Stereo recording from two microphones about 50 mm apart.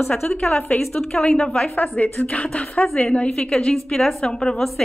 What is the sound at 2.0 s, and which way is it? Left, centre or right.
A woman's voice, left.